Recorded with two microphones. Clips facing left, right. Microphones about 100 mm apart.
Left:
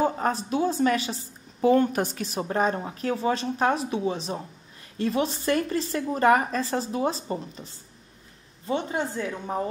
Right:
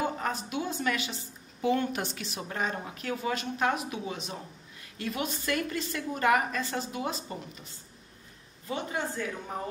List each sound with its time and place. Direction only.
0.0 s a woman's voice: 35° left (ahead or behind)